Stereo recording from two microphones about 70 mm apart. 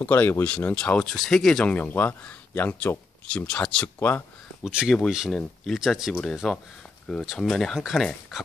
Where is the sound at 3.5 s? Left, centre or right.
Centre.